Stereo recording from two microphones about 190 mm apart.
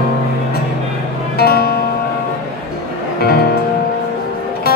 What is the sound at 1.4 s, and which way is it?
Music, 55° left (ahead or behind).